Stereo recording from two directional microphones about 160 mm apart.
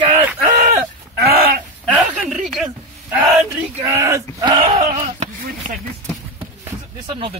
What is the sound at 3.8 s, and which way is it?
Speech, 20° right (ahead or behind).